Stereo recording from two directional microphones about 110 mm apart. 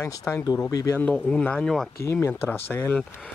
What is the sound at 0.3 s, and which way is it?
Speech, 25° left (ahead or behind).